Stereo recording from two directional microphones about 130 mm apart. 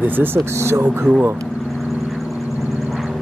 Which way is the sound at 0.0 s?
15° right (ahead or behind).